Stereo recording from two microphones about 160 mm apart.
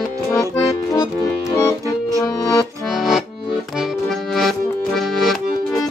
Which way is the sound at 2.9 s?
Centre (ahead or behind).